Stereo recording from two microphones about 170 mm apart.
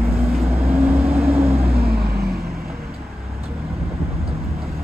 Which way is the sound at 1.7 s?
65° right (ahead or behind).